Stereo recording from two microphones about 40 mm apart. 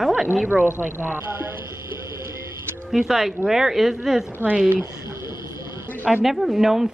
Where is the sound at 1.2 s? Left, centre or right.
Right.